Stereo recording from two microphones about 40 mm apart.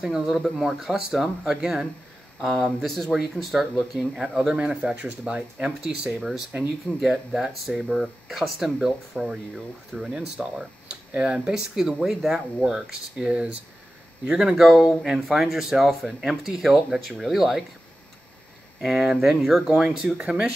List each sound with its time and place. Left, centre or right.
0.0 s speech: centre
5.9 s speech: centre
8.8 s speech: centre
10.2 s speech: right
13.2 s speech: right
14.6 s speech: centre
18.8 s speech: centre
19.6 s speech: centre